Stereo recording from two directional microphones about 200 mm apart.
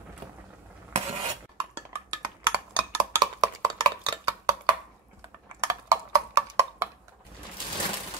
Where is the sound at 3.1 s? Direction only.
20° right (ahead or behind).